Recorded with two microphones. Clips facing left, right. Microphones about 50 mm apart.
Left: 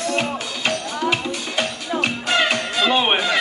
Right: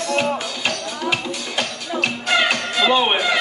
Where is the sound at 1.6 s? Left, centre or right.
Left.